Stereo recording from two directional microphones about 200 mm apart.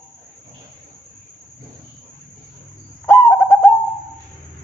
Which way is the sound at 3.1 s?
10° left (ahead or behind).